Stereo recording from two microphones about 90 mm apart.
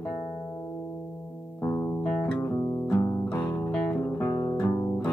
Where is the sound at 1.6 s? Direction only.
20° left (ahead or behind).